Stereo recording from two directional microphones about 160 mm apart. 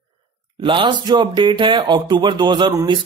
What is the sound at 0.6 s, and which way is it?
Speech, 30° right (ahead or behind).